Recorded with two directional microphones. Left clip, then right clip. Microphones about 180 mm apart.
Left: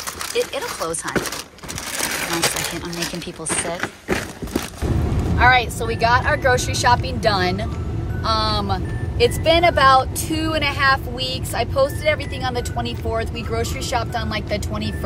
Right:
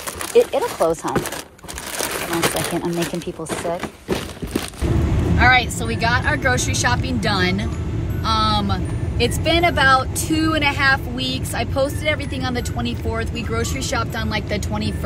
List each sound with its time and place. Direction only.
0.3 s speech: 20° right (ahead or behind)
5.4 s a woman's voice: 20° left (ahead or behind)